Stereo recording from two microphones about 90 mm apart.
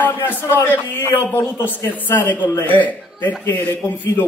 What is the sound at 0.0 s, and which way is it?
A man's voice, 25° left (ahead or behind).